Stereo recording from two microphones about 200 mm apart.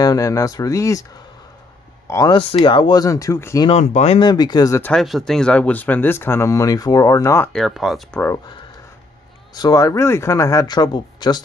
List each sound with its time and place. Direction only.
0.0 s speech: 15° left (ahead or behind)
2.0 s speech: 15° left (ahead or behind)
2.3 s speech: 25° left (ahead or behind)
3.6 s speech: 35° left (ahead or behind); by 4.9 s 15° left (ahead or behind)
4.9 s speech: centre (ahead or behind)
7.5 s speech: centre (ahead or behind)
9.5 s speech: 20° left (ahead or behind)